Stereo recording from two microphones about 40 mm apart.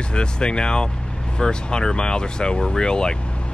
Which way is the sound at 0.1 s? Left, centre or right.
Left.